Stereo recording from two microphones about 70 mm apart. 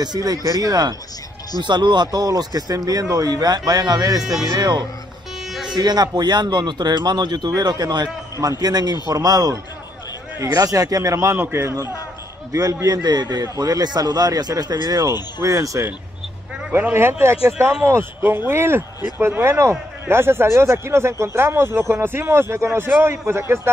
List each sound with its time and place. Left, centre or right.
0.0 s speech: right
1.6 s speech: right
4.6 s speech: right
5.5 s music: centre
5.8 s speech: right
8.4 s speech: right
12.8 s speech: right
15.4 s speech: right
16.7 s speech: right